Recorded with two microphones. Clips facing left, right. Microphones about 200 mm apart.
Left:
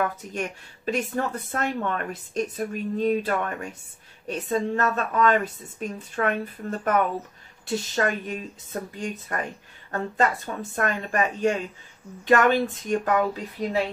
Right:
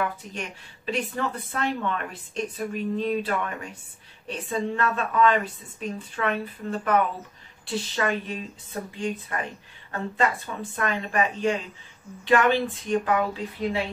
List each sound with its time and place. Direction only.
0.0 s speech: 45° left (ahead or behind)